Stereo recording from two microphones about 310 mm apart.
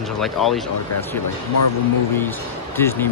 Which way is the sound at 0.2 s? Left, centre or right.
Centre.